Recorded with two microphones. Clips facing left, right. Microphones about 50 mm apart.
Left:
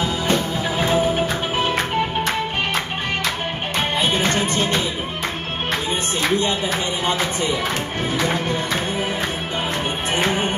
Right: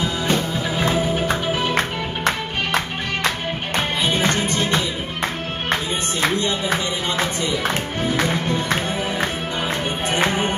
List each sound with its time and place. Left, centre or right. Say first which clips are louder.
0.3 s music: left 1 dB; left
4.0 s music: even; left